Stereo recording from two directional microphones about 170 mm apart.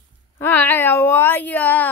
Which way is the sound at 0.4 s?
10° left (ahead or behind).